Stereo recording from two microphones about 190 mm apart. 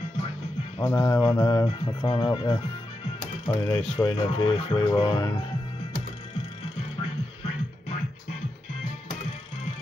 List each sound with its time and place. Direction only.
0.7 s speech: 15° left (ahead or behind)